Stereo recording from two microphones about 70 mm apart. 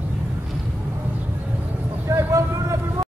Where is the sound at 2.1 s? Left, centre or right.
Right.